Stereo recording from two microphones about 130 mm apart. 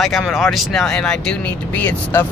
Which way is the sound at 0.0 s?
Centre (ahead or behind).